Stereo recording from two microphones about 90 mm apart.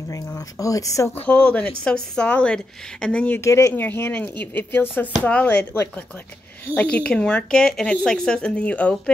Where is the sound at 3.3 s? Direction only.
35° left (ahead or behind); by 5.8 s 15° left (ahead or behind).